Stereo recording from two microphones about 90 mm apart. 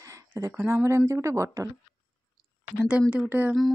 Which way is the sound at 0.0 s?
35° right (ahead or behind).